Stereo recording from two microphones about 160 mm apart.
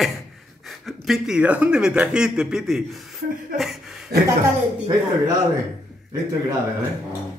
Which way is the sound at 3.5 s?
Centre (ahead or behind).